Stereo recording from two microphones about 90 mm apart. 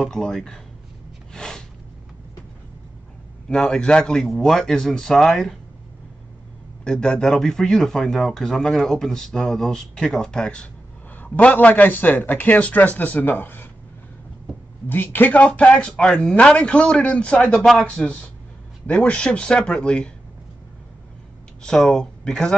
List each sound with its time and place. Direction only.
0.0 s a man's voice: 5° left (ahead or behind)
1.3 s a sound: 10° left (ahead or behind)
3.4 s a man's voice: 10° left (ahead or behind)
6.8 s a man's voice: 10° left (ahead or behind)
14.9 s speech: 20° left (ahead or behind)
17.6 s a man's voice: centre (ahead or behind)
17.8 s speech: 15° left (ahead or behind)
21.6 s speech: 5° left (ahead or behind)